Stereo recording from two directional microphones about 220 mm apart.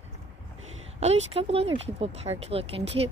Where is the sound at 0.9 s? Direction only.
30° right (ahead or behind).